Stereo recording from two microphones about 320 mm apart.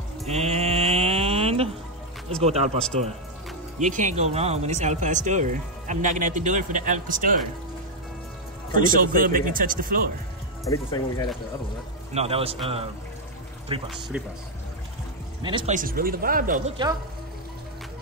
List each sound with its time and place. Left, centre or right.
0.3 s mantra: centre
2.4 s speech: centre
8.7 s speech: right
10.6 s speech: centre
12.1 s a man's voice: centre
13.7 s a man's voice: centre
14.1 s speech: centre
15.4 s speech: centre